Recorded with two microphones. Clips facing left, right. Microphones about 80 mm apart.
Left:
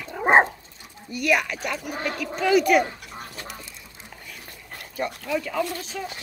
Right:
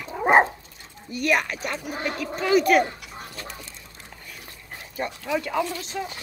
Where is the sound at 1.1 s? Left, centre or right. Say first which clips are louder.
Left 1 dB; right.